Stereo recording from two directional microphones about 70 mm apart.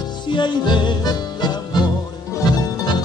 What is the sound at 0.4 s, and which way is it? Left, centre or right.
Music, left.